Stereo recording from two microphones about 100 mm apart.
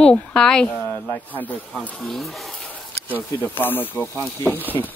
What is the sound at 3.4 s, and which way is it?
Speech, 20° left (ahead or behind).